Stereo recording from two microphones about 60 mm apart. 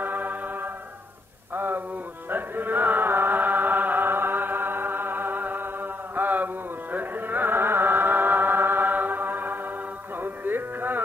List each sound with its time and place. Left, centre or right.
0.0 s music: right
1.5 s a sound: right
2.2 s music: right